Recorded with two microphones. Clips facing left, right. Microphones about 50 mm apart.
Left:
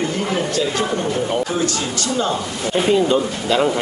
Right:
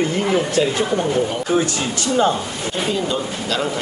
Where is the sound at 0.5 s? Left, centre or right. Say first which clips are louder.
Right 2 dB; right.